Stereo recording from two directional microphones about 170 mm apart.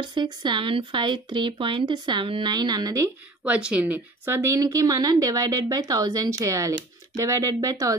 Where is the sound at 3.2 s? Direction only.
10° right (ahead or behind).